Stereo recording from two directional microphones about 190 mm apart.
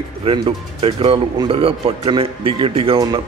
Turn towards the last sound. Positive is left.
turn(degrees=-20)  # may be behind; listen again after turning